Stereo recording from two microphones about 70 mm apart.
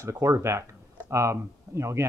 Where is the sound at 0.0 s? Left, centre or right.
Right.